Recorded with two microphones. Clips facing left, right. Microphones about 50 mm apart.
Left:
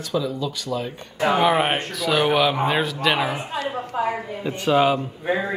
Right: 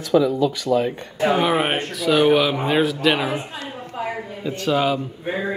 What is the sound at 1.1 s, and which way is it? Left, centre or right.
Speech, centre.